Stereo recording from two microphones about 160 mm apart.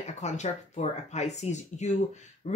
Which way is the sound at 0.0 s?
45° left (ahead or behind).